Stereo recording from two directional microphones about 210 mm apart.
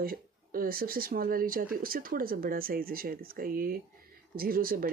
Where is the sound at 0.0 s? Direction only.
45° right (ahead or behind).